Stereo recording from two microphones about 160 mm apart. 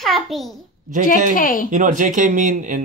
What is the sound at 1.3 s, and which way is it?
Speech, 60° left (ahead or behind).